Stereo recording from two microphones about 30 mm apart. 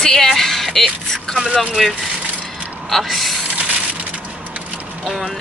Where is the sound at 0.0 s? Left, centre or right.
Centre.